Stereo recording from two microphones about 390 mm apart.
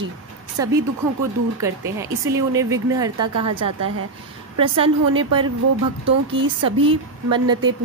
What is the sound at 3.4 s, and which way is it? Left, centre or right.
Speech, right.